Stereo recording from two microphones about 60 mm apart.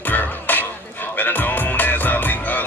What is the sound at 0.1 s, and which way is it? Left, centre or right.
Music, left.